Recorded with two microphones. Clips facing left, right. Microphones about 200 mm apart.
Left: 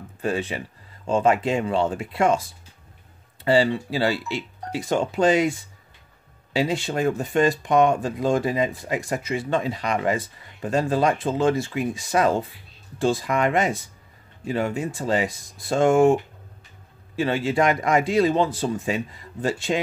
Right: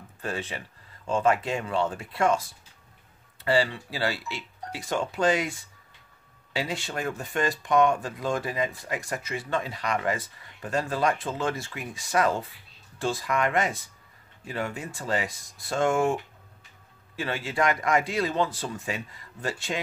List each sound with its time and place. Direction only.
0.2 s speech: 15° left (ahead or behind)
3.4 s speech: 25° left (ahead or behind)
6.5 s speech: 25° left (ahead or behind)